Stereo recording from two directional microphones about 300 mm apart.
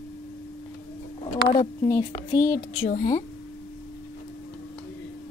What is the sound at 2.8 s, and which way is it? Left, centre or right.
Speech, left.